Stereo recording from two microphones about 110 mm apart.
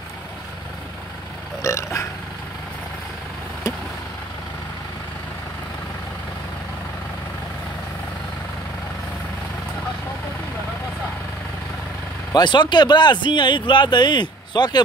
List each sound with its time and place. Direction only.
1.6 s speech: 25° left (ahead or behind)
12.3 s speech: 40° left (ahead or behind)